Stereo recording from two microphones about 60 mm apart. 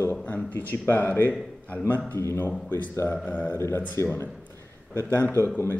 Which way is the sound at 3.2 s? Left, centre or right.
Left.